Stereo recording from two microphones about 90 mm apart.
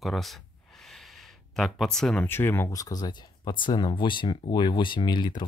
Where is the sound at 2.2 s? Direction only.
25° left (ahead or behind).